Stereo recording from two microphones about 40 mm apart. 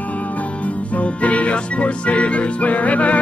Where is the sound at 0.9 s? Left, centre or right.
Left.